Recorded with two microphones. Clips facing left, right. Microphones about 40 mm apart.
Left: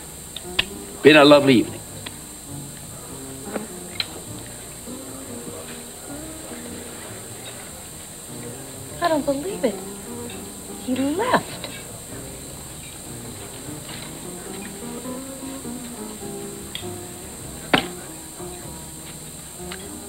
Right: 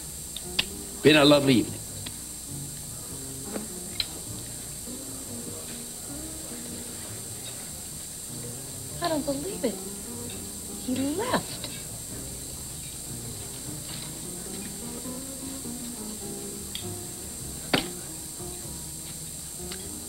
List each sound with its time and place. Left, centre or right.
0.6 s finger snapping: left
3.4 s music: left
6.0 s music: left
9.0 s music: left
10.9 s cat: left
14.2 s music: left
17.6 s a sound: left